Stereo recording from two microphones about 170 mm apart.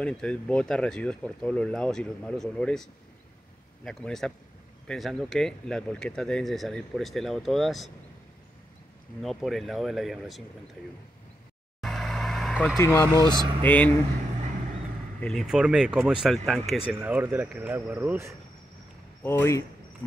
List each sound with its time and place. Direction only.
0.0 s speech: 5° left (ahead or behind)
9.2 s speech: centre (ahead or behind)
11.8 s vehicle: centre (ahead or behind)
12.7 s speech: 15° left (ahead or behind)
15.1 s speech: 5° left (ahead or behind)
17.0 s speech: 10° right (ahead or behind)
19.2 s speech: 15° left (ahead or behind)